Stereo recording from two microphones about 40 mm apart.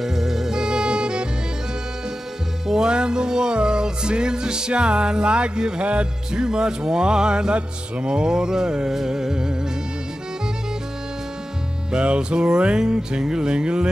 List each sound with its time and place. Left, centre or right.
0.0 s music: centre
2.6 s music: centre
6.4 s music: centre
11.9 s music: right